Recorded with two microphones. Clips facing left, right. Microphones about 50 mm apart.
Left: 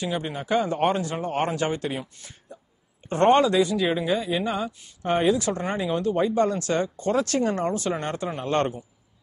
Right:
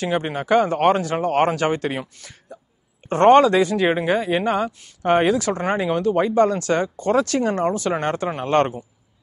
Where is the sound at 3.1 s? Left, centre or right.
Right.